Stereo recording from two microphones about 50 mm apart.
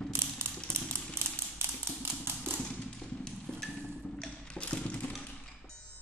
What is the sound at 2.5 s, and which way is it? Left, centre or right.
Tap, centre.